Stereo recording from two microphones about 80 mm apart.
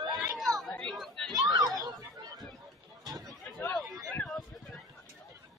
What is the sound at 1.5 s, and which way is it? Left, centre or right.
Chatter, right.